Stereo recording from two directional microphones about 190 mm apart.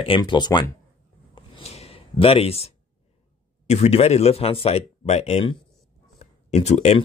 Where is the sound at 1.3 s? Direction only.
35° left (ahead or behind).